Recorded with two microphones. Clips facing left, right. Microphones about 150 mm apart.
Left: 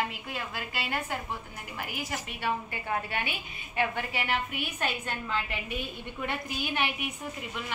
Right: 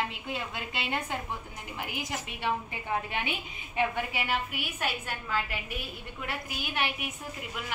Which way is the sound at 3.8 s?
15° right (ahead or behind).